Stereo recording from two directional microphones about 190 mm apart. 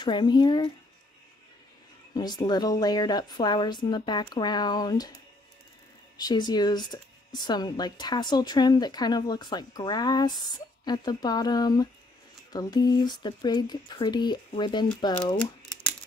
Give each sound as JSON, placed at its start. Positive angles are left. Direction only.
{"t": 0.0, "sound": "a woman's voice", "side_deg": 25}
{"t": 2.1, "sound": "a woman's voice", "side_deg": 20}
{"t": 6.1, "sound": "a woman's voice", "side_deg": 20}